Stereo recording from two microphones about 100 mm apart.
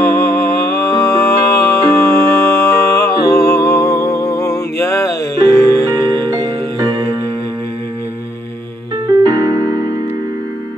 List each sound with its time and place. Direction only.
0.0 s music: 25° left (ahead or behind)
9.2 s music: 40° right (ahead or behind)